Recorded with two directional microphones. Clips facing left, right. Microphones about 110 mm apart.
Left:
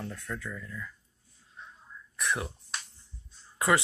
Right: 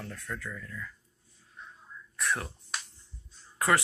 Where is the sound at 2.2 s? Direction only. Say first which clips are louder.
Left 1 dB; 15° left (ahead or behind).